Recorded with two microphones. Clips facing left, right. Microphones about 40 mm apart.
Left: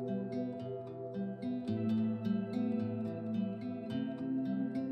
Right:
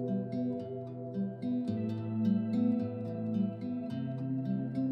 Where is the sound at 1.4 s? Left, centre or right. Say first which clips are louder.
Right 3 dB; centre.